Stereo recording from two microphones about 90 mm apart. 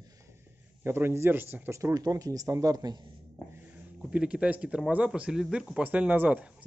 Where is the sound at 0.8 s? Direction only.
25° right (ahead or behind).